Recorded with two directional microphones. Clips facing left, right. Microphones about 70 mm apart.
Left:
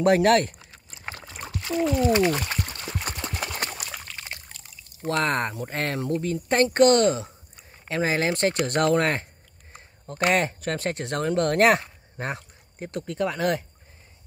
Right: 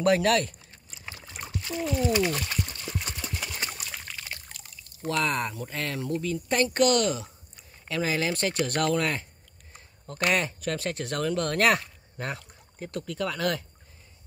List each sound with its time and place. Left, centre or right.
0.0 s speech: left
1.0 s trickle: left
1.8 s speech: left
2.6 s pour: left
4.5 s pour: centre
5.0 s speech: left
9.8 s speech: left